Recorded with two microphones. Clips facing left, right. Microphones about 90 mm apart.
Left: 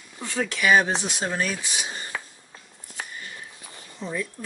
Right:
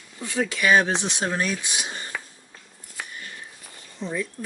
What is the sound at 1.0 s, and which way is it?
Speech, 25° right (ahead or behind).